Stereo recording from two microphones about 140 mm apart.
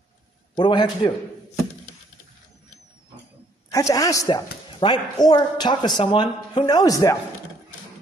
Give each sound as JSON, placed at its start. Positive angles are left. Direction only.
{"t": 0.6, "sound": "a man's voice", "side_deg": 35}
{"t": 3.7, "sound": "speech", "side_deg": 25}